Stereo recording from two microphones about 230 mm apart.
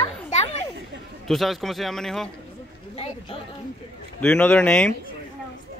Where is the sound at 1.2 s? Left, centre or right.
Centre.